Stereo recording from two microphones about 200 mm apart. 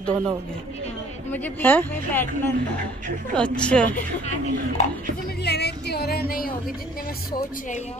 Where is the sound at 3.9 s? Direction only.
40° left (ahead or behind).